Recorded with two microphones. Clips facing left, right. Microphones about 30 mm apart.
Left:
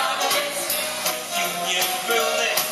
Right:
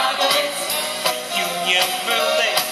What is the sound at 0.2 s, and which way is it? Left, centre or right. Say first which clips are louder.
Music: right 4 dB; right.